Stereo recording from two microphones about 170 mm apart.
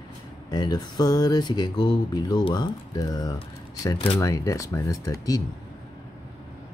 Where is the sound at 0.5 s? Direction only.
25° left (ahead or behind).